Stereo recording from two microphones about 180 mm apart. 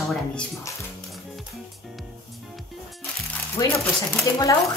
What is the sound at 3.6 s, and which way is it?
Speech, 20° left (ahead or behind).